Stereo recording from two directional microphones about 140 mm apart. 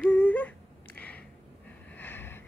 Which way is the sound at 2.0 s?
15° left (ahead or behind).